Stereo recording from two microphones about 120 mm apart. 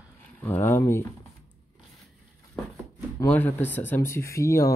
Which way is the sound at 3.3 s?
15° left (ahead or behind).